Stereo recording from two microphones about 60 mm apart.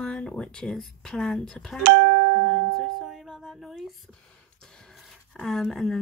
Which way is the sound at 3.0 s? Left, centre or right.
Centre.